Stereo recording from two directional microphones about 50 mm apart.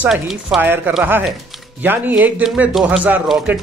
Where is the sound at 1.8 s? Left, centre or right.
Right.